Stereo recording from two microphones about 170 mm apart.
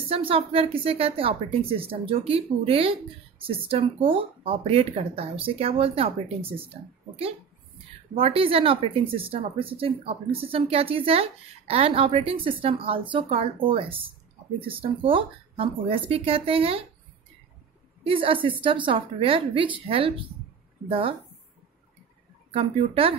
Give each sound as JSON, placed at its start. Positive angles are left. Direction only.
{"t": 0.1, "sound": "a woman's voice", "side_deg": -35}
{"t": 18.0, "sound": "a woman's voice", "side_deg": -30}
{"t": 22.5, "sound": "a woman's voice", "side_deg": -35}